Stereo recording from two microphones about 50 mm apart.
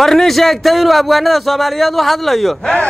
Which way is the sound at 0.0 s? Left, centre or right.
Centre.